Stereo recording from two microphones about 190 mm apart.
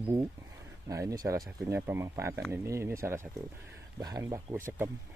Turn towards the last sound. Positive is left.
turn(degrees=-15)  # may be behind; listen again after turning